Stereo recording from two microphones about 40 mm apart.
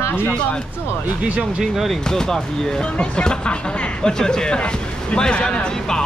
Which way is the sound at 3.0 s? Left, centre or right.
Left.